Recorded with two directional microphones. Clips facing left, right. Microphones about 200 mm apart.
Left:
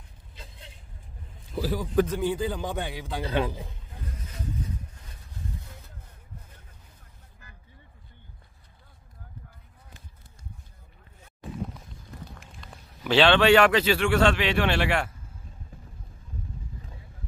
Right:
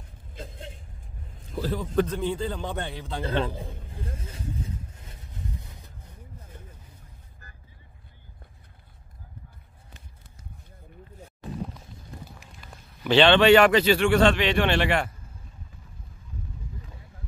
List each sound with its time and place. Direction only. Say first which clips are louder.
0.4 s vehicle: right 9 dB; 50° right (ahead or behind)
1.5 s a man's voice: even; 10° left (ahead or behind)
3.9 s vehicle: right 3 dB; 30° right (ahead or behind)
12.3 s a sound: left 1 dB; 5° right (ahead or behind)
13.6 s speech: right 2 dB; 5° right (ahead or behind)